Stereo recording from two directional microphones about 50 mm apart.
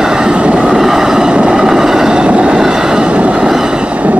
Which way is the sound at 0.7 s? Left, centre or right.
Centre.